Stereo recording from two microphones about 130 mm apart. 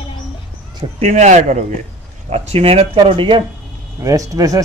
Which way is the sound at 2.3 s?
50° right (ahead or behind).